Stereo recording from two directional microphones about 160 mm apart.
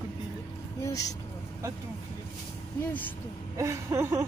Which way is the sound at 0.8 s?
20° left (ahead or behind).